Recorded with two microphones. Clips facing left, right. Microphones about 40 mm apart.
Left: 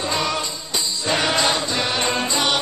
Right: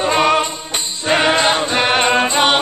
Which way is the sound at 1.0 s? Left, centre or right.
Right.